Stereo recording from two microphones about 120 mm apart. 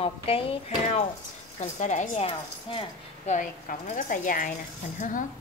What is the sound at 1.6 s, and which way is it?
Speech, 90° left.